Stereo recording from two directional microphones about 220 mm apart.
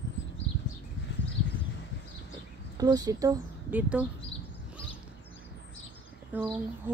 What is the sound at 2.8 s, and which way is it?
Speech, 20° right (ahead or behind).